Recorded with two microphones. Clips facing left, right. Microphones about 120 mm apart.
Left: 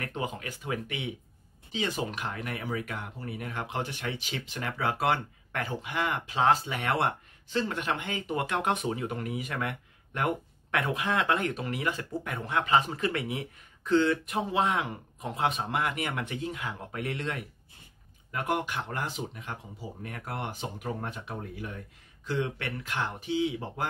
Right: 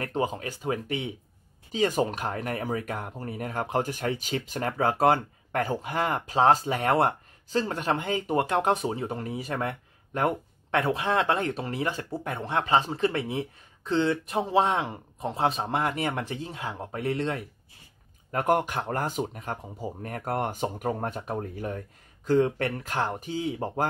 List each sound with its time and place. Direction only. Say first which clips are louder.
0.0 s speech: right 6 dB; 40° right (ahead or behind)
18.3 s speech: right 6 dB; 45° right (ahead or behind)